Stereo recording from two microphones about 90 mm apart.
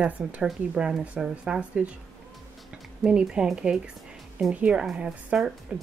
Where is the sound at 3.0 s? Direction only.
10° right (ahead or behind).